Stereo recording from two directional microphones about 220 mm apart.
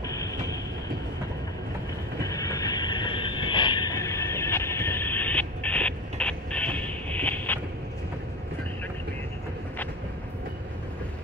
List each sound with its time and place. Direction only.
0.0 s train: 15° left (ahead or behind)
2.1 s music: 15° left (ahead or behind)